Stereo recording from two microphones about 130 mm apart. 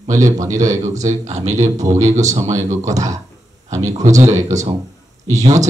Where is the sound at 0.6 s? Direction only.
65° right (ahead or behind).